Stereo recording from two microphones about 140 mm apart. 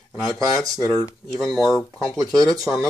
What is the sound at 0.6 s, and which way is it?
Speech, 25° right (ahead or behind).